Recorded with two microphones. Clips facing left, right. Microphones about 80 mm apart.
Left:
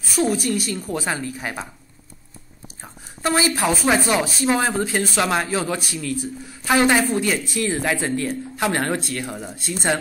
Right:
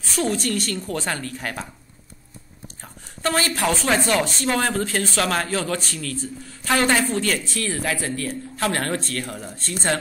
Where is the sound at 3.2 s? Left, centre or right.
Centre.